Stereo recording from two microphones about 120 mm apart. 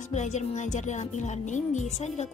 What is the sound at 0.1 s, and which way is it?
Speech, 75° left (ahead or behind).